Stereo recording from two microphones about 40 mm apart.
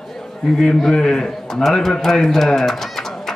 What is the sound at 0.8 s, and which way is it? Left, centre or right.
A man's voice, centre.